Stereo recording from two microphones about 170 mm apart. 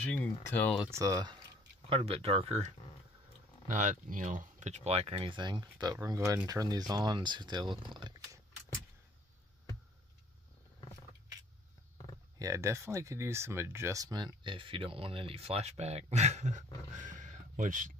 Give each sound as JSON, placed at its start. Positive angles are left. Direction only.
{"t": 0.0, "sound": "speech", "side_deg": 10}
{"t": 0.8, "sound": "speech", "side_deg": -20}
{"t": 12.4, "sound": "speech", "side_deg": -20}